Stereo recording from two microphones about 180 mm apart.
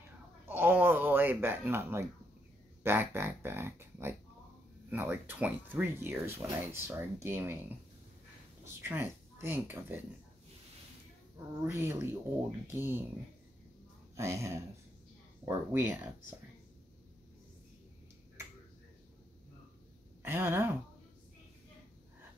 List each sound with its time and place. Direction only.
0.5 s a sound: 10° right (ahead or behind)
2.8 s speech: 15° right (ahead or behind)
8.6 s speech: 15° right (ahead or behind)
11.3 s speech: 15° right (ahead or behind)
14.1 s speech: 15° right (ahead or behind)
20.2 s speech: 10° right (ahead or behind)